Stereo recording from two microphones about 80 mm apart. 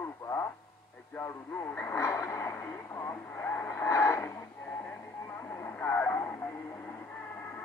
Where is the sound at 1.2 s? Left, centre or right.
Left.